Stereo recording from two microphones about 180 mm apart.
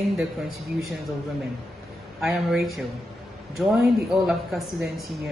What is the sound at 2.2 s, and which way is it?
Speech, centre (ahead or behind).